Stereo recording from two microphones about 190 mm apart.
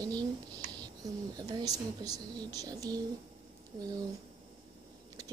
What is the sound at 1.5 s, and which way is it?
A woman's voice, 20° right (ahead or behind).